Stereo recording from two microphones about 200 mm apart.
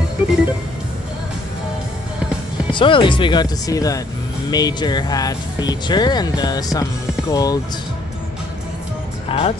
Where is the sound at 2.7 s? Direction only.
25° left (ahead or behind).